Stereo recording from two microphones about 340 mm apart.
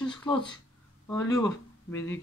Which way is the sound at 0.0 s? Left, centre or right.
Centre.